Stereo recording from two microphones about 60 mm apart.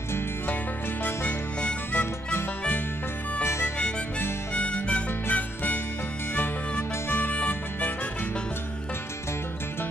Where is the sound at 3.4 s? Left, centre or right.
Left.